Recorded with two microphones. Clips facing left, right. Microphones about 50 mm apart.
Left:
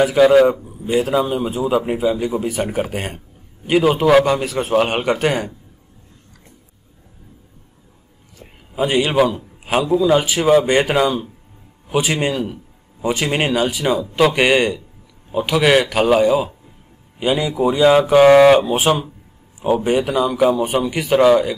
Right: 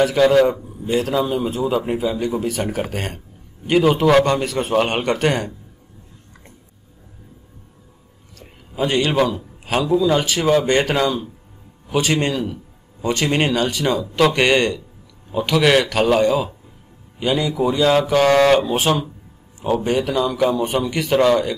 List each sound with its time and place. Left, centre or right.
0.0 s a man's voice: centre
8.4 s a sound: centre
9.8 s a man's voice: centre